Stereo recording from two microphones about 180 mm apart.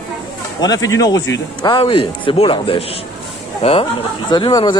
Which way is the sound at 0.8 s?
20° left (ahead or behind).